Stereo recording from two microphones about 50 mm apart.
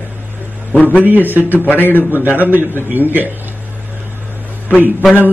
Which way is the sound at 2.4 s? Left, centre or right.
Right.